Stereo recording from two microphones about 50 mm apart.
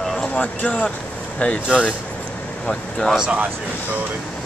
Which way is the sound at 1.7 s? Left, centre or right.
Right.